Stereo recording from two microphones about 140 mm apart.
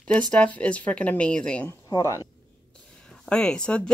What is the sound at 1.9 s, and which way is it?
Speech, 25° left (ahead or behind).